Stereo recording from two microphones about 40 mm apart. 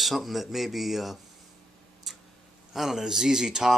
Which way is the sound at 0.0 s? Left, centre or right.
Centre.